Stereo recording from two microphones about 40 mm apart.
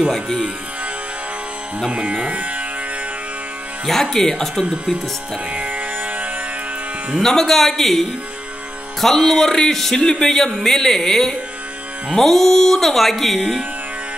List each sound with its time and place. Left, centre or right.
1.9 s speech: right
3.8 s speech: centre
5.5 s music: right
7.2 s speech: centre